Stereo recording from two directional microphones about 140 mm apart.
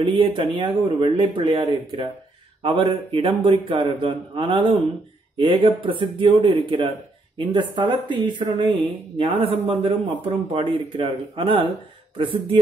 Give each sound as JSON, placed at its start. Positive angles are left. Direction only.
{"t": 0.0, "sound": "speech", "side_deg": -35}